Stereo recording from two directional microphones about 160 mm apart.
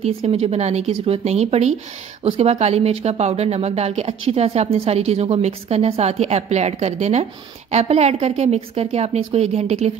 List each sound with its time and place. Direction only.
0.0 s speech: 40° right (ahead or behind)